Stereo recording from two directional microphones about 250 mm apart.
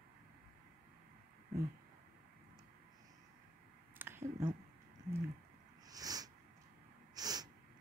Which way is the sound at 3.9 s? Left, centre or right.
Centre.